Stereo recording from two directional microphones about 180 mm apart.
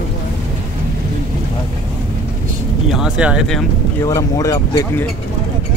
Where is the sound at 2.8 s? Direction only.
5° right (ahead or behind).